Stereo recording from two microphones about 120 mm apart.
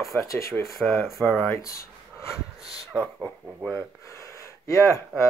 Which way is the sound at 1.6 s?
25° left (ahead or behind).